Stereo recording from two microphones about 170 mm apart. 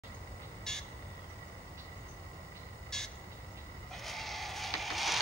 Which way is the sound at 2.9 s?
5° left (ahead or behind).